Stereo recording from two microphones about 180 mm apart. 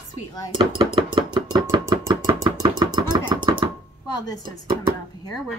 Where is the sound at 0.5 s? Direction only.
30° right (ahead or behind).